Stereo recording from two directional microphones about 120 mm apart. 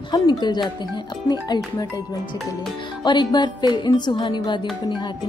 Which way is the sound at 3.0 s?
40° left (ahead or behind).